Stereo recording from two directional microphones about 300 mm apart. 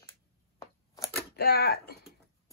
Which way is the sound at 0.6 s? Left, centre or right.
Centre.